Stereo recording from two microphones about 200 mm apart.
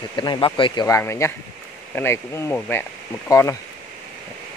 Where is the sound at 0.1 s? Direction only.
25° left (ahead or behind).